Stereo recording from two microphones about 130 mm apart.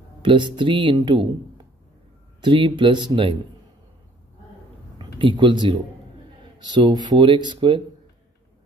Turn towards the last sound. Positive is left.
turn(degrees=-40)  # may be behind; listen again after turning